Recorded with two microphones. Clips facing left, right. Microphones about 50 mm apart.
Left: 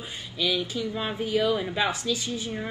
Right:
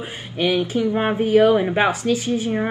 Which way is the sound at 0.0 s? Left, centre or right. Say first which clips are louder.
Right 7 dB; right.